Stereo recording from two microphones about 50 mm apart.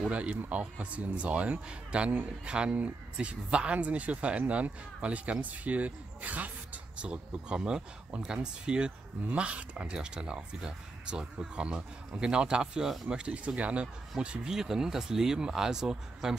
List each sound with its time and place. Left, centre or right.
0.1 s speech: right; by 16.3 s centre